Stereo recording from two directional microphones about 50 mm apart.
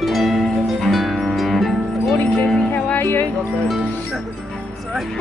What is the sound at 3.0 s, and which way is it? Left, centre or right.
Music, left.